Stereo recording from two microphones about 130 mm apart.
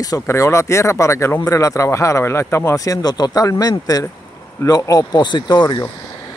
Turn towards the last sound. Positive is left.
turn(degrees=30)  # may be behind; listen again after turning